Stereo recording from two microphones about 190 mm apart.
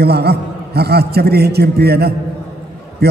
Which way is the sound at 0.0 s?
60° right (ahead or behind).